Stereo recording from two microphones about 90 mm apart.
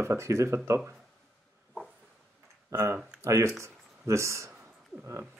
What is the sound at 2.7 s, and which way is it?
Speech, 30° right (ahead or behind).